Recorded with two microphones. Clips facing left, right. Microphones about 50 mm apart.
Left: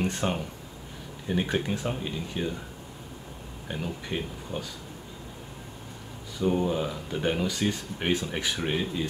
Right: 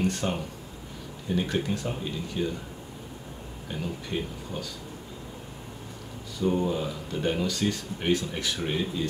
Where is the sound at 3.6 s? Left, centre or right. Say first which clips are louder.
Left 1 dB; centre.